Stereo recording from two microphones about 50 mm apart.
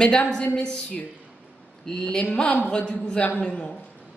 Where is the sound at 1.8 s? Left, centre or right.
Centre.